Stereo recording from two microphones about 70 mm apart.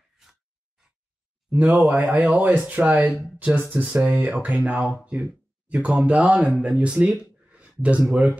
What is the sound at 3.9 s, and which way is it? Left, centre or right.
Speech, centre.